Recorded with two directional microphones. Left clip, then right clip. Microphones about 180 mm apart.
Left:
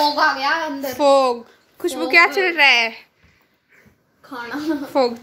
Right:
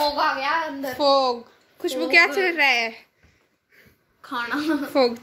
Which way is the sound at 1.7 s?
10° left (ahead or behind).